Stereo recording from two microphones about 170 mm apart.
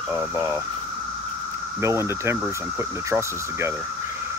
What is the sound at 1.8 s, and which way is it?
Speech, 15° right (ahead or behind).